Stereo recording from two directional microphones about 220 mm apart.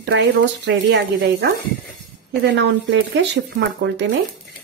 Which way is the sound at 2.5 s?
55° right (ahead or behind).